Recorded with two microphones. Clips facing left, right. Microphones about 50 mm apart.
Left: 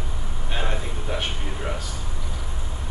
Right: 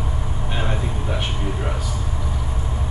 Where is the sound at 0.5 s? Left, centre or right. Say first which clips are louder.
Right 2 dB; centre.